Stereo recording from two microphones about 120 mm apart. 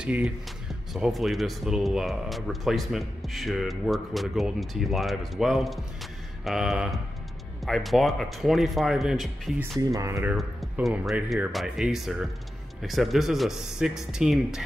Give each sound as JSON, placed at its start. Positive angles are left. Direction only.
{"t": 0.0, "sound": "speech", "side_deg": -10}
{"t": 9.9, "sound": "speech", "side_deg": -25}
{"t": 10.3, "sound": "speech", "side_deg": 0}